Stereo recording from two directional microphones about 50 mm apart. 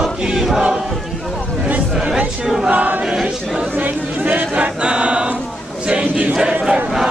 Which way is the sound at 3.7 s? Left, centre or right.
Right.